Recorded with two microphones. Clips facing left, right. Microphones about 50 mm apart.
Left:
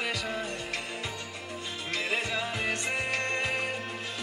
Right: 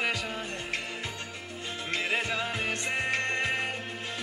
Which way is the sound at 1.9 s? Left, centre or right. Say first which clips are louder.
Right 1 dB; right.